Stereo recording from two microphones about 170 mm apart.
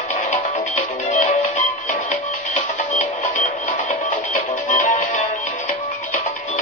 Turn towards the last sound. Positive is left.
turn(degrees=50)  # may be behind; listen again after turning